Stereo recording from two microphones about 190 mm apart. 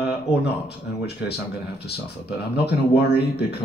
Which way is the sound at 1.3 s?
60° left (ahead or behind).